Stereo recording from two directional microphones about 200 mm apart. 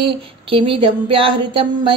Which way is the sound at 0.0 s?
25° right (ahead or behind).